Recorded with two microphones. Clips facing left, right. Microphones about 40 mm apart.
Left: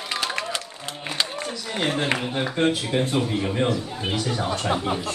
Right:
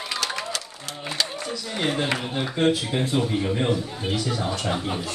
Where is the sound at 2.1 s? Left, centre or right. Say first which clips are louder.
Left 2 dB; left.